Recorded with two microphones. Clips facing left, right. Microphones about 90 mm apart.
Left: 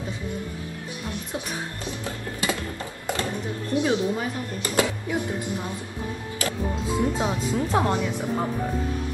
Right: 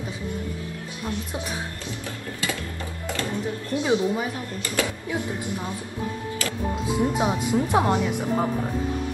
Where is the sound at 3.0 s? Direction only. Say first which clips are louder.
Left 2 dB; 20° left (ahead or behind).